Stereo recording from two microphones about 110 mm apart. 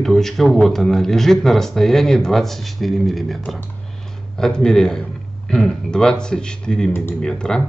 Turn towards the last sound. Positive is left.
turn(degrees=5)  # may be behind; listen again after turning